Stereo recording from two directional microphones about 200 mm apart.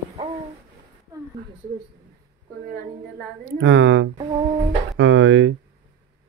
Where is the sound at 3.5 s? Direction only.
70° right (ahead or behind).